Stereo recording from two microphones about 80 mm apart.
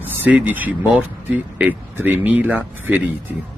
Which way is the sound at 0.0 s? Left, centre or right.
Right.